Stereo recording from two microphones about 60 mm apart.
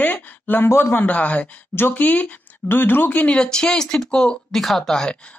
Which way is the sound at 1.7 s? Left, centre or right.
Left.